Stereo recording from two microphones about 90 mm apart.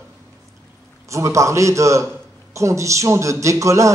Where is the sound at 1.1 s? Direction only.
35° right (ahead or behind).